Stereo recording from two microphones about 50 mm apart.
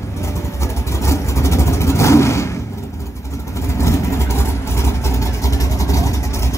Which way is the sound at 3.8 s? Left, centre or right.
Left.